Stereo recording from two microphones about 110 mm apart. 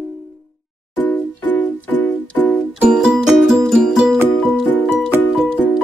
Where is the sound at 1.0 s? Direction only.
15° left (ahead or behind).